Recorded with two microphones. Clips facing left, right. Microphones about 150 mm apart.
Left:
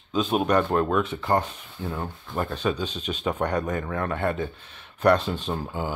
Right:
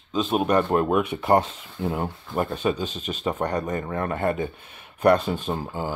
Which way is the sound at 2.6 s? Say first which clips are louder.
Right 2 dB; 5° right (ahead or behind).